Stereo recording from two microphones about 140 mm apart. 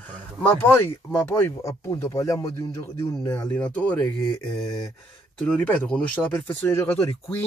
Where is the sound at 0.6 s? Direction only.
15° left (ahead or behind).